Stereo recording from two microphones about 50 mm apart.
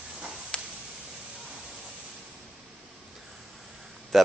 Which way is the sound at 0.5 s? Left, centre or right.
Centre.